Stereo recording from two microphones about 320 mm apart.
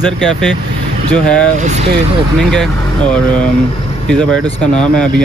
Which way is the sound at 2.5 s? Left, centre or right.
Centre.